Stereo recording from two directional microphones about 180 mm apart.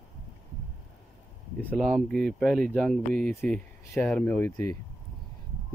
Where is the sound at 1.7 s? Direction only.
Centre (ahead or behind).